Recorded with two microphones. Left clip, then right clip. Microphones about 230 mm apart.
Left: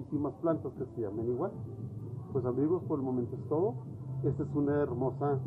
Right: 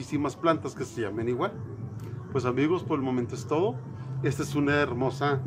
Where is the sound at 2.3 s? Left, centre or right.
Right.